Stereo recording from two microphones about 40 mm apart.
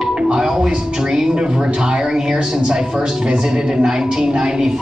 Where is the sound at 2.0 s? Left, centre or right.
Centre.